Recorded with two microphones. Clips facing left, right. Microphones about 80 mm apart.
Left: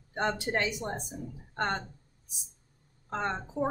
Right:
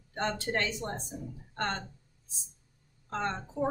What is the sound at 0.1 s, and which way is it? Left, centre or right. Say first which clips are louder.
A woman's voice: left 2 dB; centre.